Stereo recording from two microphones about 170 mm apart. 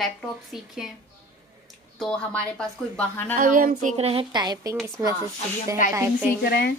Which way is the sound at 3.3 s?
55° right (ahead or behind).